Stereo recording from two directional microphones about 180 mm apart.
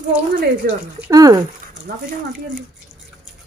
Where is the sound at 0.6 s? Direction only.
55° right (ahead or behind).